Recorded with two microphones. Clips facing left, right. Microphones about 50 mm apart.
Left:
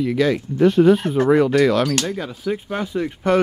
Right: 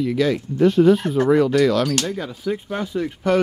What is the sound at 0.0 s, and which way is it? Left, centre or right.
Speech, left.